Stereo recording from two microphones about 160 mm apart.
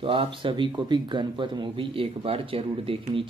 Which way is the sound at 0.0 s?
35° right (ahead or behind).